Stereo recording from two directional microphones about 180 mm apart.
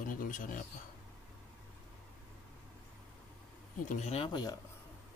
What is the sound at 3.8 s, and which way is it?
Speech, 40° left (ahead or behind).